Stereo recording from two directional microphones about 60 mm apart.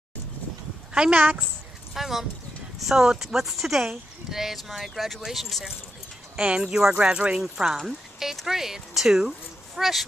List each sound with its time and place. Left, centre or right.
0.9 s speech: centre
2.0 s speech: centre
6.3 s speech: centre